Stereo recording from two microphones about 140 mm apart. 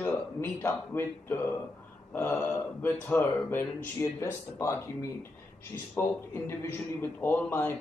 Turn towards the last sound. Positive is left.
turn(degrees=15)  # may be behind; listen again after turning